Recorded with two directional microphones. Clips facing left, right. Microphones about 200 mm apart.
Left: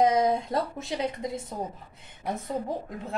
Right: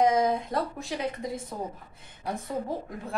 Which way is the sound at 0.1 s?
25° left (ahead or behind).